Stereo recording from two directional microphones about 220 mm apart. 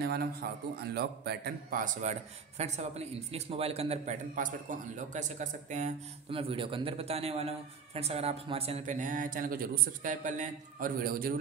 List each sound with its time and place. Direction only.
0.0 s a man's voice: 45° right (ahead or behind)